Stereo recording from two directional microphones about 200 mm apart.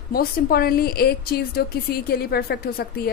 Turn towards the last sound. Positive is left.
turn(degrees=50)  # may be behind; listen again after turning